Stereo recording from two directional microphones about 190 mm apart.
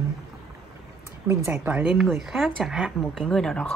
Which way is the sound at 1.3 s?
10° right (ahead or behind).